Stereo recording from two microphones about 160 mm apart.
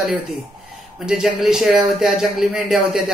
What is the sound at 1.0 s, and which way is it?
A man's voice, 5° right (ahead or behind).